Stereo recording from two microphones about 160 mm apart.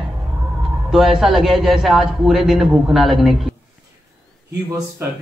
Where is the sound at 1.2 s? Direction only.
Centre (ahead or behind).